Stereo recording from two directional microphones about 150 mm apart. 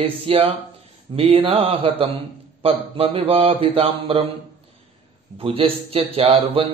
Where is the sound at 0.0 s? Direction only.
40° right (ahead or behind).